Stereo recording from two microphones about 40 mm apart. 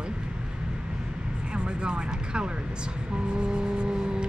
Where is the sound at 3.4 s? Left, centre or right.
Right.